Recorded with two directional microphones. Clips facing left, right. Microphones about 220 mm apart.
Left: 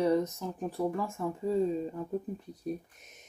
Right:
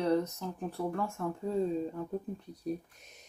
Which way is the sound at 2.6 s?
Centre (ahead or behind).